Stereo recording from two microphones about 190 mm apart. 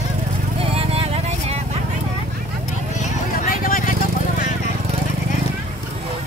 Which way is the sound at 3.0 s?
45° left (ahead or behind).